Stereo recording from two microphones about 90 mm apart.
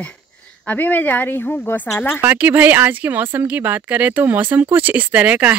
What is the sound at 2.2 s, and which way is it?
Speech, 20° right (ahead or behind).